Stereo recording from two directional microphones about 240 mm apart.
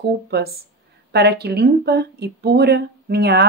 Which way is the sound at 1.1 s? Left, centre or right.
Right.